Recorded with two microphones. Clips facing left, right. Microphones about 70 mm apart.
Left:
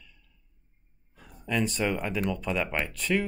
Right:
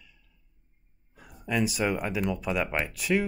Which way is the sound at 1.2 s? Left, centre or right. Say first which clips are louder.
Right 1 dB; centre.